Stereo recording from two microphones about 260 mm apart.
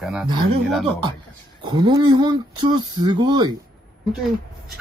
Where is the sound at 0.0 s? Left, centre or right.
Centre.